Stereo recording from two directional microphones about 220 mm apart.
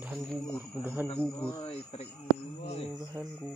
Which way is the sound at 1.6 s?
25° left (ahead or behind).